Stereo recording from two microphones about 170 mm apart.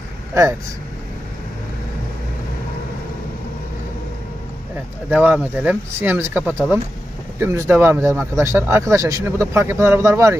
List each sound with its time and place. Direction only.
0.3 s speech: 15° right (ahead or behind)
5.1 s speech: 10° right (ahead or behind)